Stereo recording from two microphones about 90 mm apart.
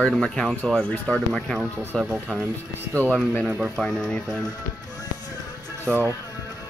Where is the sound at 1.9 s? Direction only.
10° left (ahead or behind).